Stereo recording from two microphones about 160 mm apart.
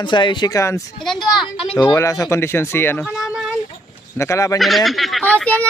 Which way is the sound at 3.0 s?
5° right (ahead or behind).